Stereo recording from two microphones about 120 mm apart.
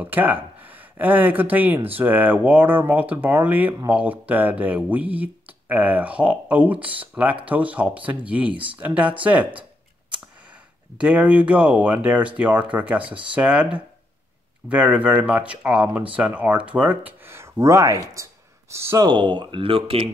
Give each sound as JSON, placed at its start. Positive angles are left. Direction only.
{"t": 0.0, "sound": "speech", "side_deg": -15}
{"t": 11.0, "sound": "speech", "side_deg": -10}
{"t": 19.0, "sound": "speech", "side_deg": -40}